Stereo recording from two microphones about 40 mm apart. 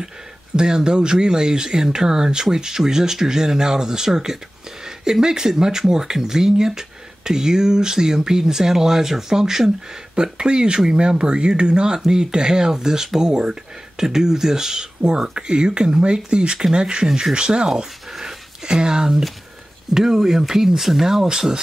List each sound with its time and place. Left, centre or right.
0.6 s speech: centre
18.2 s a sound: centre
19.9 s speech: centre